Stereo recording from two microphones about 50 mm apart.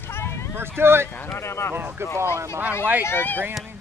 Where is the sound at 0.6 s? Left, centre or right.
Right.